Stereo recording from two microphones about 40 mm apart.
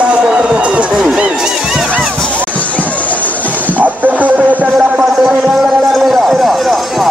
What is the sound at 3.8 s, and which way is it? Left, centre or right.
Music, right.